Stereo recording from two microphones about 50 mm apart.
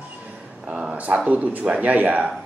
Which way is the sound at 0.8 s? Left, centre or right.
Right.